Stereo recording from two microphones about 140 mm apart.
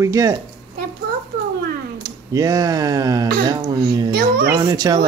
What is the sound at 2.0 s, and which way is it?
Speech, 25° right (ahead or behind).